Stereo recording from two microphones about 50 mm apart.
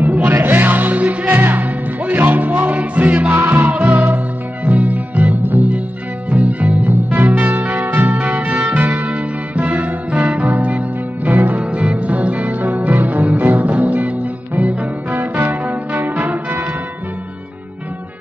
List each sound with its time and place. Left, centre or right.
0.0 s music: right
3.7 s music: right